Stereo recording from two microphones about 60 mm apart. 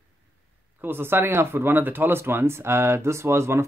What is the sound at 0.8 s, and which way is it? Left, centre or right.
Speech, right.